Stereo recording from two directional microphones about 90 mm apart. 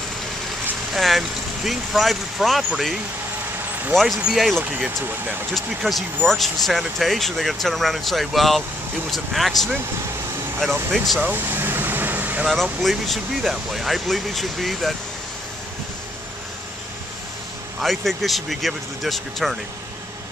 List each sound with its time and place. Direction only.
0.9 s speech: centre (ahead or behind)
3.9 s speech: 5° left (ahead or behind)
4.7 s speech: 15° right (ahead or behind)
5.7 s speech: 5° right (ahead or behind)
11.1 s vehicle: 20° right (ahead or behind)
12.8 s speech: centre (ahead or behind)
17.7 s speech: centre (ahead or behind)